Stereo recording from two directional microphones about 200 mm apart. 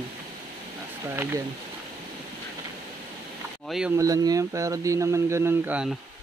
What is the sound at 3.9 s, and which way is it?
Speech, 15° right (ahead or behind).